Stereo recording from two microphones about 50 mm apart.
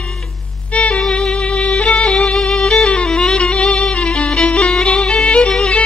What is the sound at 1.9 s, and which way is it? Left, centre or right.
Music, left.